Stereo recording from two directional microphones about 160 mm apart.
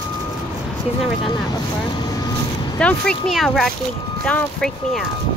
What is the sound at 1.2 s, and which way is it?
Vehicle, 25° left (ahead or behind).